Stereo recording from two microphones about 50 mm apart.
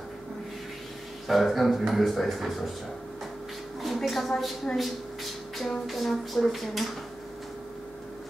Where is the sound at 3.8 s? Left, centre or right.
Centre.